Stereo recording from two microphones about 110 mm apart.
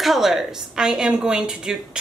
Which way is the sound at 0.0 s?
Centre (ahead or behind).